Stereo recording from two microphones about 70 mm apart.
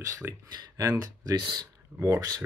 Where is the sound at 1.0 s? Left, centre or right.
Right.